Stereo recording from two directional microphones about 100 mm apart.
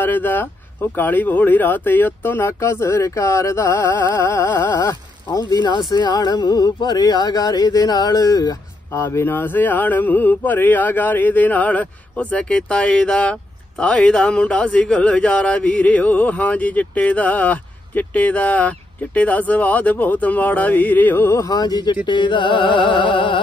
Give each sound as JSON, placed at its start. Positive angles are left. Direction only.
{"t": 0.0, "sound": "speech", "side_deg": 20}
{"t": 4.7, "sound": "speech", "side_deg": 40}
{"t": 9.0, "sound": "a sound", "side_deg": 25}
{"t": 22.0, "sound": "music", "side_deg": 50}